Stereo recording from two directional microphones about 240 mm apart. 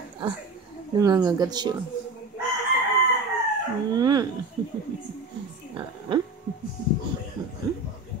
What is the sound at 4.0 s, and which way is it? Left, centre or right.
Speech, centre.